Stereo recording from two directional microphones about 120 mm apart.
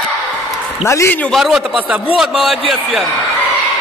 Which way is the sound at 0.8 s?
25° left (ahead or behind).